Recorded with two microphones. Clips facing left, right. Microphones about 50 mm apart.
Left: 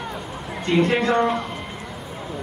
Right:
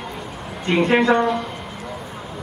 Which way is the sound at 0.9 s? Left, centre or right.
Right.